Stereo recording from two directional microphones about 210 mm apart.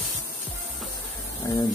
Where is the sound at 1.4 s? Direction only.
15° left (ahead or behind).